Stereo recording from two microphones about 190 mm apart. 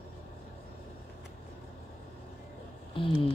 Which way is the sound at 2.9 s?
25° left (ahead or behind).